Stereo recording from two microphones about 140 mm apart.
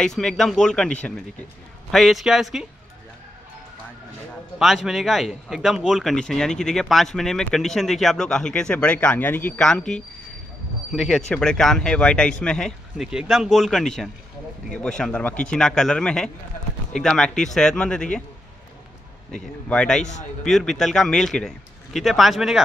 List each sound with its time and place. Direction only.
0.0 s a man's voice: 5° left (ahead or behind)
4.6 s a man's voice: centre (ahead or behind)
19.3 s a man's voice: 5° left (ahead or behind)
20.0 s a man's voice: 55° left (ahead or behind)
20.4 s a man's voice: centre (ahead or behind)